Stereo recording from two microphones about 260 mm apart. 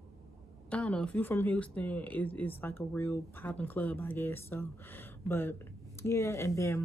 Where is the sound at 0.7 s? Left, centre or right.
Centre.